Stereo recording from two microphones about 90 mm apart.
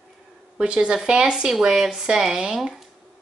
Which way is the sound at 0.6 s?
10° right (ahead or behind).